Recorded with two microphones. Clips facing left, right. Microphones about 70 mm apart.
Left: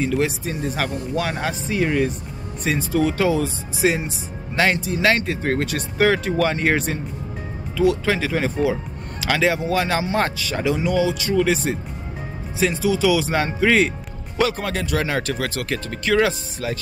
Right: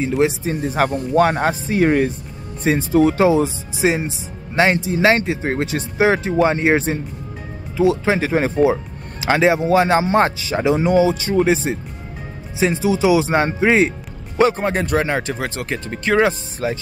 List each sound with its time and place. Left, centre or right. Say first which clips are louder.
0.0 s speech: right 4 dB; right
15.0 s speech: right 3 dB; right